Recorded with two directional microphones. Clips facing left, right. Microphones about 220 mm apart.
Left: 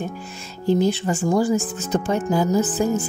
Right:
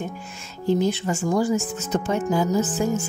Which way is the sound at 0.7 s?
30° left (ahead or behind).